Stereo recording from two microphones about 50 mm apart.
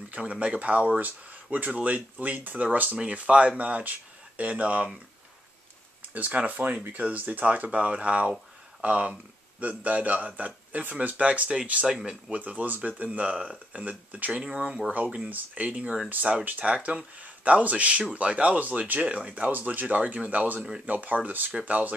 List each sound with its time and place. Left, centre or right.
0.1 s speech: right
6.1 s speech: right
11.8 s speech: centre
12.3 s speech: right
15.2 s speech: right
15.7 s speech: centre
16.1 s speech: right